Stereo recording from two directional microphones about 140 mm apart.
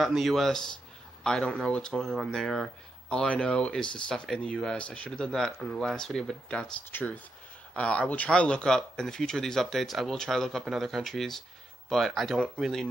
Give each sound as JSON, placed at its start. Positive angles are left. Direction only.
{"t": 0.0, "sound": "speech", "side_deg": 0}